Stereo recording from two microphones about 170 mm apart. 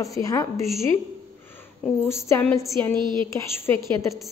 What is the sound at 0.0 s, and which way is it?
Speech, 20° left (ahead or behind).